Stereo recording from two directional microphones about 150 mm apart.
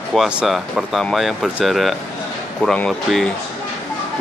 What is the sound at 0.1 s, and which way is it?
Speech, 5° right (ahead or behind).